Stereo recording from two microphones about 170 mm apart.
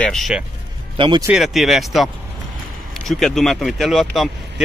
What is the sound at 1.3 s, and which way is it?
Speech, centre (ahead or behind).